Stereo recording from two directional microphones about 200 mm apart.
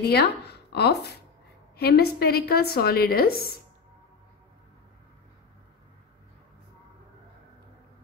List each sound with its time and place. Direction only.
0.0 s a woman's voice: 55° left (ahead or behind)